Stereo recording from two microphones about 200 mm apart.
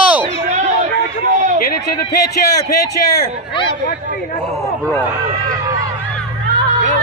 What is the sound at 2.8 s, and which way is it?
Speech, 20° left (ahead or behind).